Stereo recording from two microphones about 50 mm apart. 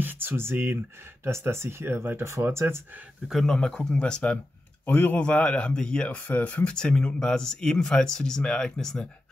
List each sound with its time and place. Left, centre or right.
0.0 s speech: right
1.2 s speech: right
3.4 s speech: centre
4.8 s speech: left
6.2 s speech: left
6.7 s speech: centre